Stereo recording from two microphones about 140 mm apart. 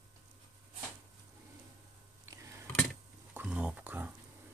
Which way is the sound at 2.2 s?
20° right (ahead or behind).